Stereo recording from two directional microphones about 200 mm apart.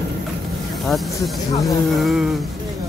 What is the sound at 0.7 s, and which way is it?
Speech, centre (ahead or behind).